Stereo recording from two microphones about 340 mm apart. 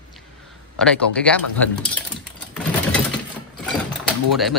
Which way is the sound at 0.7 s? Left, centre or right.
Centre.